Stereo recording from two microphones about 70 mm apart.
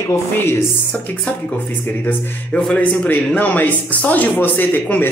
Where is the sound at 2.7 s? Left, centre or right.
Centre.